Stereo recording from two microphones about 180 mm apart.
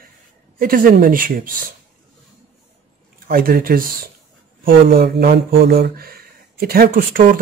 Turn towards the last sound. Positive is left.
turn(degrees=-55)  # may be behind; listen again after turning